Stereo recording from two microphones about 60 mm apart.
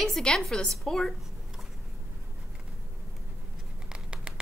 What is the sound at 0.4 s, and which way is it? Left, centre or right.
Speech, centre.